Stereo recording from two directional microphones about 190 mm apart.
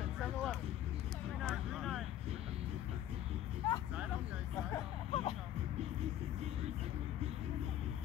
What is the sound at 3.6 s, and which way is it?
Vehicle, 20° left (ahead or behind).